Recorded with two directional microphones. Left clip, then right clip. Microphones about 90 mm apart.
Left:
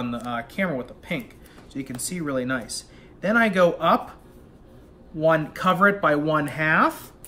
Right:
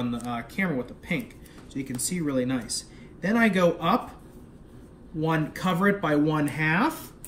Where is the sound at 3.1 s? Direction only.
45° left (ahead or behind).